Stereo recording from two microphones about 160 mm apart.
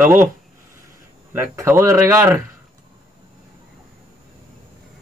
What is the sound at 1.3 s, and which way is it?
Speech, 15° right (ahead or behind).